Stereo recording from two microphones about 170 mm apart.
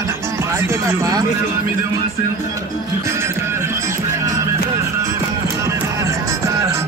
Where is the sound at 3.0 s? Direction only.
15° right (ahead or behind).